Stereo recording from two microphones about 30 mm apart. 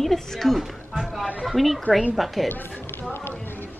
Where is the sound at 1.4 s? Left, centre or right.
Centre.